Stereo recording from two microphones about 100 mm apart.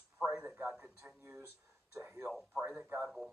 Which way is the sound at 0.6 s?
20° right (ahead or behind).